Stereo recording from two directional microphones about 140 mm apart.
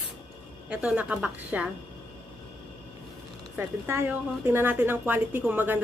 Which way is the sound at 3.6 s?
15° right (ahead or behind).